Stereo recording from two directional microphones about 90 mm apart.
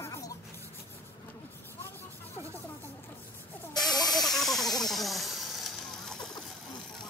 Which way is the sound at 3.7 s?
50° left (ahead or behind).